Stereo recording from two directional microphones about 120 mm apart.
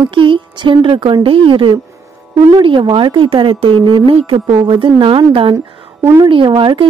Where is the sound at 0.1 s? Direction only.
45° right (ahead or behind).